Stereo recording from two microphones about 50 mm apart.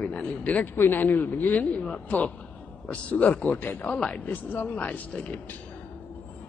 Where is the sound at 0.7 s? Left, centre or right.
Left.